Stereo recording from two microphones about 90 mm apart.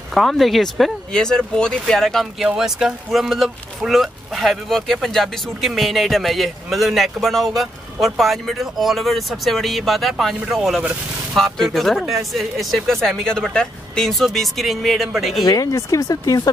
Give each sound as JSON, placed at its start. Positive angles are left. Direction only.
{"t": 0.1, "sound": "speech", "side_deg": 0}
{"t": 2.4, "sound": "speech", "side_deg": -5}
{"t": 15.4, "sound": "speech", "side_deg": 40}